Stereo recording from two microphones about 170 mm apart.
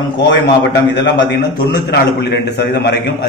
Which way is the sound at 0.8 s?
90° left.